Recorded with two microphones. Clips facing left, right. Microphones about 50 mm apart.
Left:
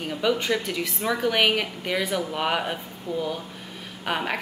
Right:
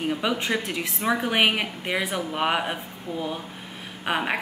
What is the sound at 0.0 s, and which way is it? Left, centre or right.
A woman's voice, centre.